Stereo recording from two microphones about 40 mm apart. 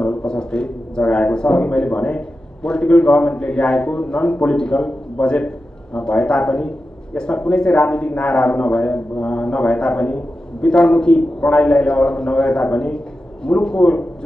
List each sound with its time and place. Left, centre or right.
0.2 s a man's voice: left